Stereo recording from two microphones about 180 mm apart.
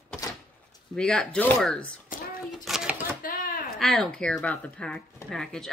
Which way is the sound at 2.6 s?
5° right (ahead or behind).